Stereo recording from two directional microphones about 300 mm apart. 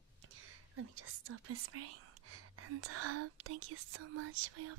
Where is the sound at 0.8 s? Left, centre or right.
Right.